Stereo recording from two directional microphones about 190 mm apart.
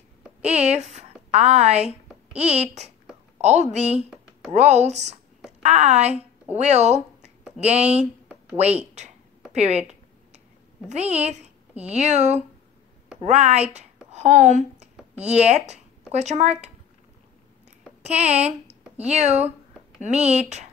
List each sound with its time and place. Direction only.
0.4 s a woman's voice: 35° right (ahead or behind)
9.5 s speech: 35° right (ahead or behind)
10.9 s a woman's voice: 35° right (ahead or behind)
18.0 s speech: 35° right (ahead or behind)
18.3 s a sound: 5° right (ahead or behind)
19.0 s speech: 35° right (ahead or behind)